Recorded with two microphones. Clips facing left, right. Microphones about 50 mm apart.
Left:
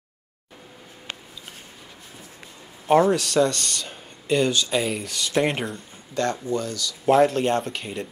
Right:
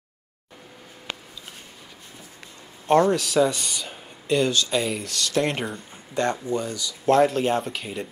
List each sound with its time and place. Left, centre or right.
2.9 s speech: centre
5.2 s speech: centre
5.5 s speech: centre
6.1 s speech: centre
7.1 s speech: centre